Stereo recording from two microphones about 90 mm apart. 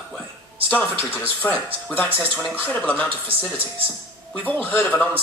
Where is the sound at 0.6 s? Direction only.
20° left (ahead or behind).